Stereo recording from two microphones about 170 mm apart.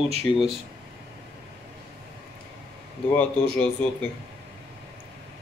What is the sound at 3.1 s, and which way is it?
Speech, 5° left (ahead or behind).